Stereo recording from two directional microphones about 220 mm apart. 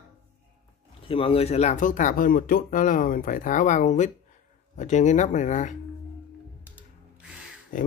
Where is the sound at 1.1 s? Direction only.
25° left (ahead or behind).